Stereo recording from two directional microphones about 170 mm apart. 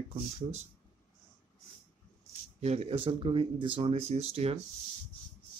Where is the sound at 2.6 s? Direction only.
40° right (ahead or behind).